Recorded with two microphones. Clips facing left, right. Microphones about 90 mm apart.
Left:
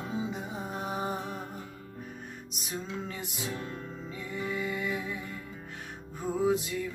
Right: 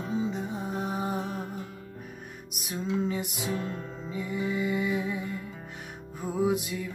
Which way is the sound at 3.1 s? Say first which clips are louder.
Right 6 dB; 15° right (ahead or behind).